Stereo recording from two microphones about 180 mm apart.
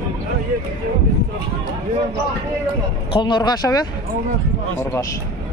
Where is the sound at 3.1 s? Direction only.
25° left (ahead or behind).